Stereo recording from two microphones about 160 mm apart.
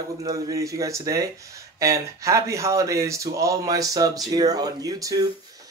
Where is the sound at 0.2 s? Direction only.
20° right (ahead or behind).